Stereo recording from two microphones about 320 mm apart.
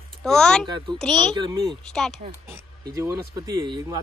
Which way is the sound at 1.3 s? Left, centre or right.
Centre.